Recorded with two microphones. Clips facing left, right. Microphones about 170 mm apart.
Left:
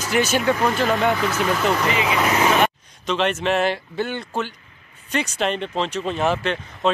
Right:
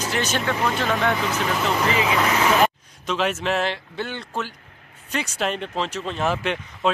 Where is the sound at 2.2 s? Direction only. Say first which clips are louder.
Left 2 dB; 15° left (ahead or behind).